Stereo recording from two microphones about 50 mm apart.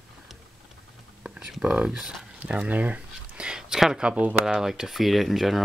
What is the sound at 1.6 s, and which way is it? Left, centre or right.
Speech, centre.